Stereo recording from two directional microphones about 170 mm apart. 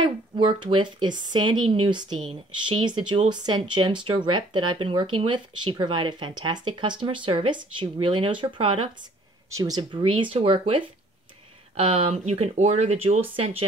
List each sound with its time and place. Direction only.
0.6 s speech: 30° right (ahead or behind)